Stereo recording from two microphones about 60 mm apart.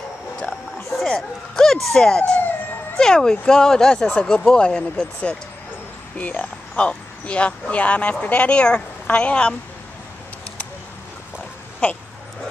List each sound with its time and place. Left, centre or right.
1.0 s speech: centre
6.1 s speech: left